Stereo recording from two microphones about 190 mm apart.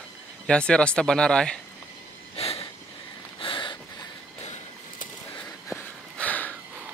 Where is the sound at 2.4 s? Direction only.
30° left (ahead or behind).